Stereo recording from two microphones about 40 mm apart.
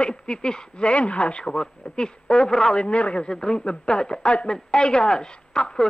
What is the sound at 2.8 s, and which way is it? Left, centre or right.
Speech, left.